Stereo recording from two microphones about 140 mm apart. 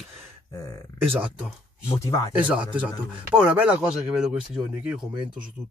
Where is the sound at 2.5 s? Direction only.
10° right (ahead or behind).